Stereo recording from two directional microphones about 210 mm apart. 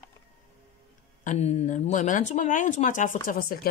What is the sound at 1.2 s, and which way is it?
A woman's voice, 35° left (ahead or behind).